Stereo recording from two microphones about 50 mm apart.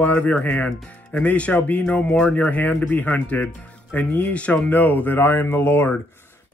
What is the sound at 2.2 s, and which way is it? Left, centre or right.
Speech, left.